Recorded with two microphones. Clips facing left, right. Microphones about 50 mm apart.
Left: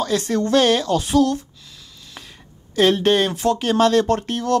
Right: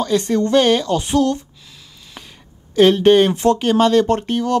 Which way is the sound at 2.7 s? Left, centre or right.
Centre.